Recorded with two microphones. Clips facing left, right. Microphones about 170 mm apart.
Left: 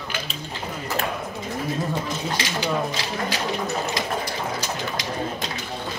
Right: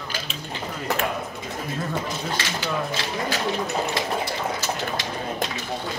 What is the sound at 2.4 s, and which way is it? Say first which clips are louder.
Speech: left 2 dB; 15° left (ahead or behind).